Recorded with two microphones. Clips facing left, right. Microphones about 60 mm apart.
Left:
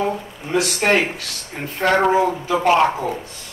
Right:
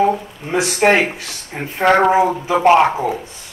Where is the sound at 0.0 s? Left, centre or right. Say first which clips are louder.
Right 6 dB; right.